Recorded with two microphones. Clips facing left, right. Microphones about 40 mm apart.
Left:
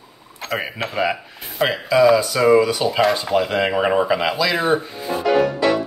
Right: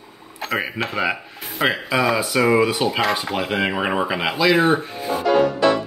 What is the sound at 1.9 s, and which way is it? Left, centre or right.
Speech, right.